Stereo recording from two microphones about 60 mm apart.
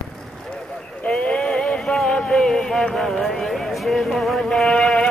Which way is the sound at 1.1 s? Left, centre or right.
Centre.